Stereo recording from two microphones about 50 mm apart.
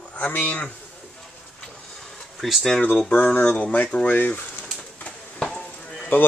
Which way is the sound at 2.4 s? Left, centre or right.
Centre.